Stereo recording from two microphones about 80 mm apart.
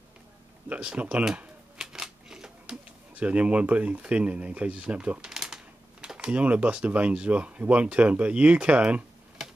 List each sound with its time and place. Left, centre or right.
0.7 s speech: centre